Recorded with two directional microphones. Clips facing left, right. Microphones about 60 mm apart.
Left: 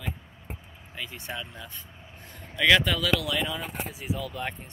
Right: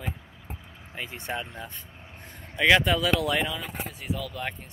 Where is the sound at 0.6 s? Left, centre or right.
Right.